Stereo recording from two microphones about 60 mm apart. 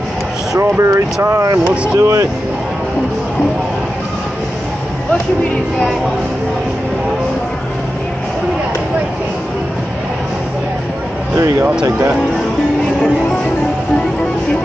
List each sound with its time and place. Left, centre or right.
0.6 s speech: right